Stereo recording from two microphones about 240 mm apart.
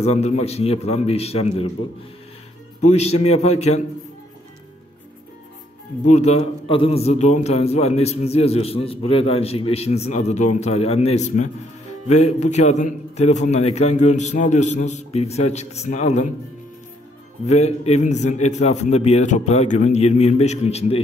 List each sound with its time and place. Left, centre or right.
0.0 s a man's voice: left
2.8 s a man's voice: left
6.0 s a man's voice: left
17.5 s a man's voice: left